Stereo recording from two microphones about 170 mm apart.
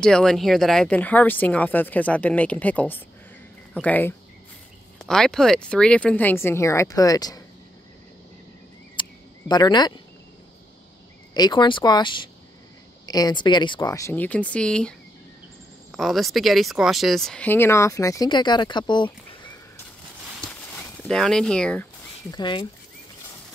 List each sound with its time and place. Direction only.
0.0 s speech: 5° left (ahead or behind); by 7.4 s 20° left (ahead or behind)
9.0 s a sound: 30° left (ahead or behind)
9.5 s speech: 25° left (ahead or behind)
11.3 s speech: 25° left (ahead or behind)
21.1 s speech: 5° left (ahead or behind)
22.3 s speech: 25° left (ahead or behind)